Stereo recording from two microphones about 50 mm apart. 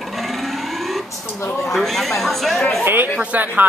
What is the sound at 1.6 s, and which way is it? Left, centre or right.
Speech, centre.